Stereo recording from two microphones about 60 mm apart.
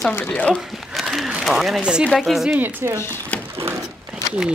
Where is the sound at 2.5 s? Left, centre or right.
Right.